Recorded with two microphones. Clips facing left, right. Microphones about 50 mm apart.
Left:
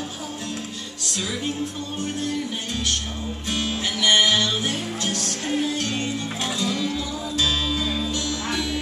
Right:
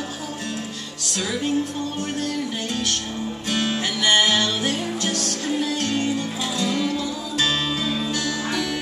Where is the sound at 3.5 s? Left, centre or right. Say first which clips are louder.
Right 2 dB; right.